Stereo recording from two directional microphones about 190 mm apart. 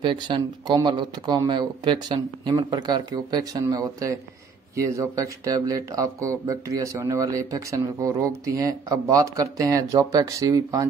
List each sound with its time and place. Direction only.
0.0 s speech: 25° right (ahead or behind)